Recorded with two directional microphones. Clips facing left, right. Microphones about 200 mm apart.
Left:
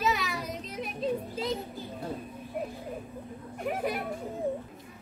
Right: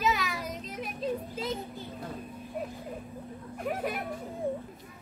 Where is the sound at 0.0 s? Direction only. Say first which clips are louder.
Even; centre (ahead or behind).